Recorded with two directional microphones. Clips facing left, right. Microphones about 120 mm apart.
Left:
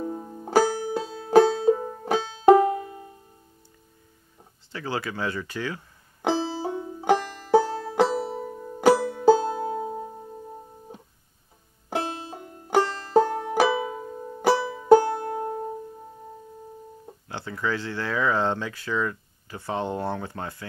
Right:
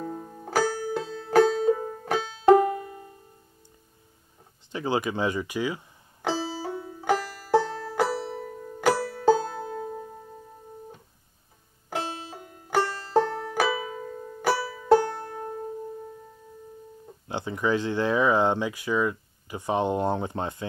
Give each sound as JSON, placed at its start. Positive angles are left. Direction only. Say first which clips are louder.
{"t": 0.0, "sound": "music", "louder": "left 3 dB", "side_deg": 20}
{"t": 2.4, "sound": "banjo", "louder": "left 2 dB", "side_deg": 15}
{"t": 4.7, "sound": "speech", "louder": "right 4 dB", "side_deg": -20}
{"t": 6.2, "sound": "banjo", "louder": "left 4 dB", "side_deg": 15}
{"t": 7.7, "sound": "music", "louder": "left 4 dB", "side_deg": 20}
{"t": 11.9, "sound": "banjo", "louder": "left 3 dB", "side_deg": 25}
{"t": 12.7, "sound": "music", "louder": "left 3 dB", "side_deg": 15}
{"t": 13.4, "sound": "banjo", "louder": "left 4 dB", "side_deg": 20}
{"t": 15.3, "sound": "music", "louder": "left 5 dB", "side_deg": 25}
{"t": 17.3, "sound": "speech", "louder": "right 3 dB", "side_deg": -20}